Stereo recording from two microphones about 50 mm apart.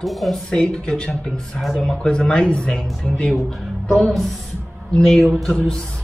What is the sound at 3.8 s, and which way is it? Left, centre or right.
A woman's voice, centre.